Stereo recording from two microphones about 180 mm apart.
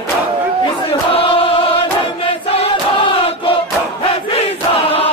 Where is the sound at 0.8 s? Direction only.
30° left (ahead or behind).